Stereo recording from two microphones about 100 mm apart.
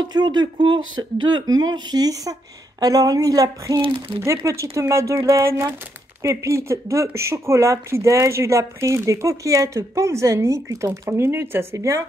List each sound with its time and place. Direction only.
0.0 s speech: 45° right (ahead or behind)
3.7 s speech: 55° right (ahead or behind)
4.2 s speech: 30° right (ahead or behind)